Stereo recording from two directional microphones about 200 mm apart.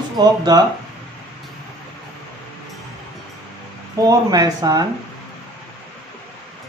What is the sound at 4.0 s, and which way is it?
Speech, 20° right (ahead or behind).